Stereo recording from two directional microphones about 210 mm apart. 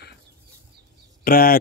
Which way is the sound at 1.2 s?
45° left (ahead or behind).